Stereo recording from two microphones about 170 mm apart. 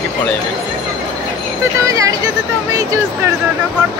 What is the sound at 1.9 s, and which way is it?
Speech, 20° right (ahead or behind).